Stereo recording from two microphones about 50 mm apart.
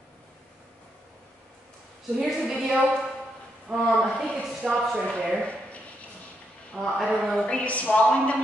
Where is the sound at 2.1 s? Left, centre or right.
Centre.